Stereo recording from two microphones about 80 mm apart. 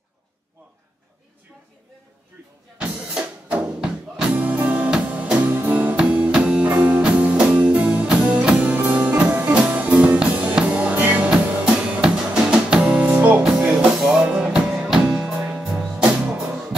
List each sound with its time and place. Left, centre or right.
2.8 s music: centre
13.9 s music: centre